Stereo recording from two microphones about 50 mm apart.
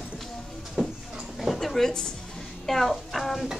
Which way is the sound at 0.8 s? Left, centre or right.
Centre.